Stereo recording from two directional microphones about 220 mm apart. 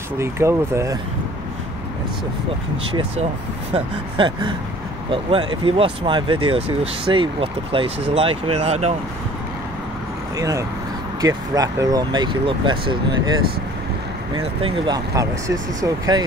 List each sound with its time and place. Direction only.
0.2 s speech: 10° right (ahead or behind)
2.9 s speech: 25° right (ahead or behind)
10.3 s speech: 15° right (ahead or behind)
14.3 s speech: 20° right (ahead or behind)